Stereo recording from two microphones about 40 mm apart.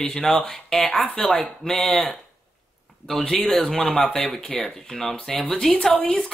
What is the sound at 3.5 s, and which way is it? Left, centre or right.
Speech, centre.